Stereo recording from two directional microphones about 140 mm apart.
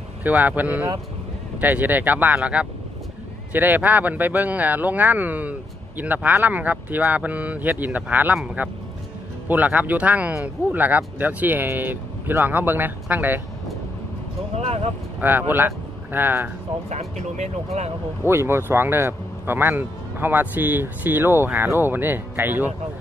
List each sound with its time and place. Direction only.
0.2 s speech: 10° right (ahead or behind)
14.6 s speech: 50° right (ahead or behind)
15.1 s speech: 15° right (ahead or behind)
16.9 s speech: 55° right (ahead or behind)
18.2 s speech: 20° right (ahead or behind)